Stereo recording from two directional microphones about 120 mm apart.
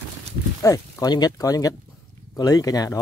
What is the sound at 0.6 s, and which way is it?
Speech, 25° left (ahead or behind).